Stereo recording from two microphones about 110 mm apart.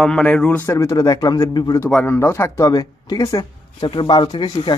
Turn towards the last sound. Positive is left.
turn(degrees=45)  # may be behind; listen again after turning